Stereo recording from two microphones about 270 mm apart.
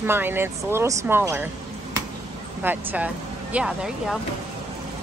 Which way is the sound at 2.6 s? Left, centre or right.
Centre.